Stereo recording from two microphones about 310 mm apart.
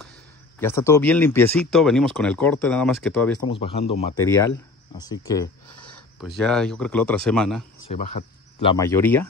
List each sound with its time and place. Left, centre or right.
0.6 s speech: centre
3.4 s speech: centre
7.9 s speech: left
8.7 s speech: centre